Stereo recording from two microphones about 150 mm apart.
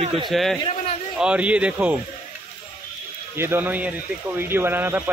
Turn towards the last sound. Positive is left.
turn(degrees=-15)  # may be behind; listen again after turning